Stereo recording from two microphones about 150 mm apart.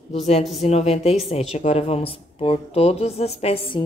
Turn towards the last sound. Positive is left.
turn(degrees=40)  # may be behind; listen again after turning